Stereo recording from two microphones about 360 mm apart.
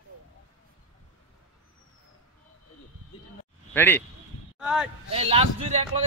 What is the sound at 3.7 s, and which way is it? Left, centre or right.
Speech, centre.